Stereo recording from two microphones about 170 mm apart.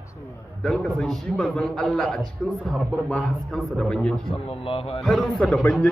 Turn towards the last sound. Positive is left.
turn(degrees=5)  # may be behind; listen again after turning